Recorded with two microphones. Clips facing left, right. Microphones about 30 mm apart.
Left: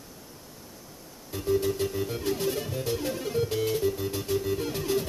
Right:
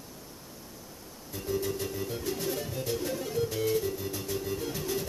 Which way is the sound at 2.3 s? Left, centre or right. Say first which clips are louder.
Left 5 dB; left.